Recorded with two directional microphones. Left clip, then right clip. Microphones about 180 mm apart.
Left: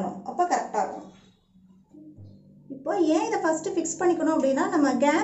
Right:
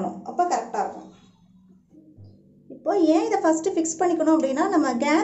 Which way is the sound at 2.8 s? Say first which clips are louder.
Right 4 dB; 25° right (ahead or behind).